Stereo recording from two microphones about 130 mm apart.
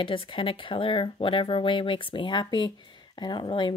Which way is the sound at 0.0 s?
40° left (ahead or behind).